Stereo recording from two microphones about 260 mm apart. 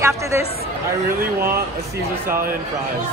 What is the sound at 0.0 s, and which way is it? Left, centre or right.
Speech, centre.